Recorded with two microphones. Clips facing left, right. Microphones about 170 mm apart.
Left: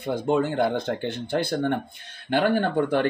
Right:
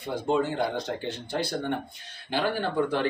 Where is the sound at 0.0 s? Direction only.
55° left (ahead or behind).